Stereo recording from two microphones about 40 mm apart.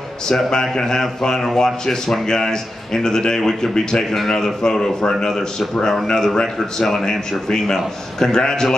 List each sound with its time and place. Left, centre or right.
0.5 s a man's voice: centre